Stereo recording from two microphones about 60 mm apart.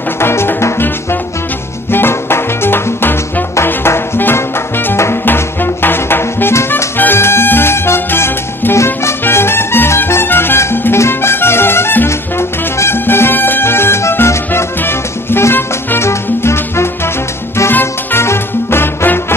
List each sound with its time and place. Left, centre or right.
0.2 s music: left
1.9 s music: left
12.1 s music: left